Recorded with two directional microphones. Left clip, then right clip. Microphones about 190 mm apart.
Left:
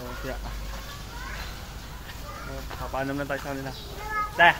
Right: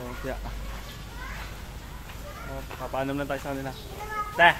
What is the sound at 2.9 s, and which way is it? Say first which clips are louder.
Speech: even; 10° right (ahead or behind).